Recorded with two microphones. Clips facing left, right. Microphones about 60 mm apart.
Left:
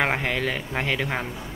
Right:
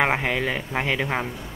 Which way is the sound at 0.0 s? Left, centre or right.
Centre.